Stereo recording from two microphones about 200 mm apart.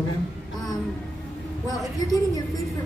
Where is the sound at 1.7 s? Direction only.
20° left (ahead or behind).